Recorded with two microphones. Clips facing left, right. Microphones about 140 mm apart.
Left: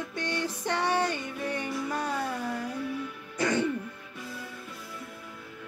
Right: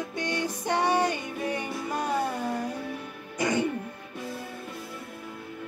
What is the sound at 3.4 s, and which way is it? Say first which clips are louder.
Throat clearing: right 1 dB; 15° right (ahead or behind).